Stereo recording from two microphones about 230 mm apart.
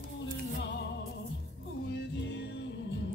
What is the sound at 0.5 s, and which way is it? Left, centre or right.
Music, left.